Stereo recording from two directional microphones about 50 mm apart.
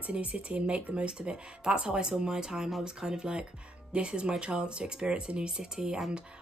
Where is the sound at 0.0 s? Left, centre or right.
Right; by 6.1 s centre.